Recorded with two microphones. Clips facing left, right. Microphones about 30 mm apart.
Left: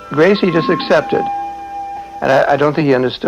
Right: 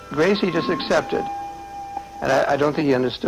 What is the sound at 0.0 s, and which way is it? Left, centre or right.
Speech, left.